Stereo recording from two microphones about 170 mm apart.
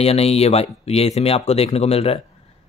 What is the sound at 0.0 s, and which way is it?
Speech, 35° left (ahead or behind).